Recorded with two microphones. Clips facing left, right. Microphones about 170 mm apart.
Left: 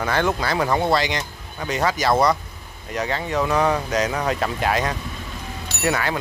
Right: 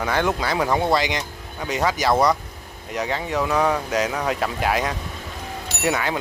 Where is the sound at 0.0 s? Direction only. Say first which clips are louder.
Even; 15° right (ahead or behind).